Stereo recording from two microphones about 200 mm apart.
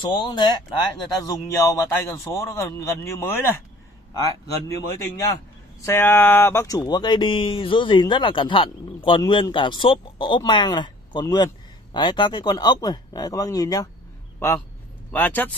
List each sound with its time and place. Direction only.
0.0 s a man's voice: 25° left (ahead or behind)
1.6 s a man's voice: 15° left (ahead or behind)
15.0 s speech: 10° left (ahead or behind)